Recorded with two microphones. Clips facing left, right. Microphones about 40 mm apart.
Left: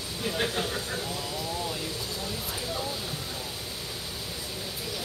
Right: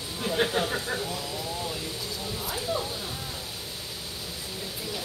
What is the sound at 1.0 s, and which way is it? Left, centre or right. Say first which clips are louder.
Speech: even; centre.